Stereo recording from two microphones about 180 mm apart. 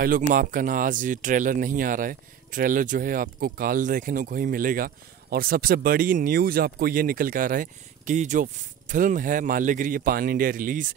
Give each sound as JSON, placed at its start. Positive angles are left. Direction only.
{"t": 0.0, "sound": "speech", "side_deg": -50}